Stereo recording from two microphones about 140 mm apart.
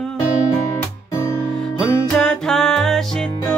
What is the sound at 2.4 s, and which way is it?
Music, 5° left (ahead or behind).